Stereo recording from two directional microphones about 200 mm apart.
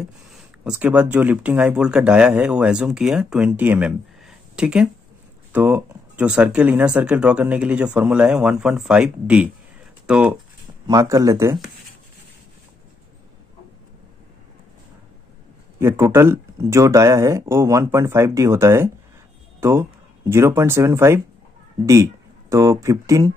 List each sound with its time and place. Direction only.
0.3 s speech: 5° right (ahead or behind)
10.9 s speech: 15° right (ahead or behind)
15.8 s speech: 10° right (ahead or behind)